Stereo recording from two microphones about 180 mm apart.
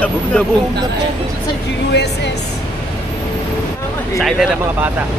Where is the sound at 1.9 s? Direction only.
75° left (ahead or behind).